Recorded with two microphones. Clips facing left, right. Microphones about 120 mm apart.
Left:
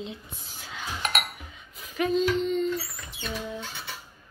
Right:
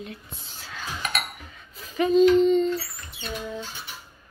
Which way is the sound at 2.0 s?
Centre (ahead or behind).